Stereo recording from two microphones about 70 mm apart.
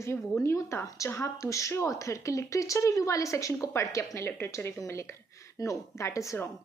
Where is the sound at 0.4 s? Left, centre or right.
Left.